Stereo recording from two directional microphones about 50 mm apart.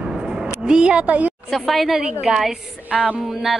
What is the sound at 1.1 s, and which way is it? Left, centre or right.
Speech, right.